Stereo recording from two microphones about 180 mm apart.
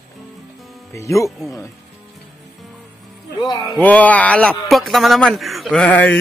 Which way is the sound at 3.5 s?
Centre (ahead or behind).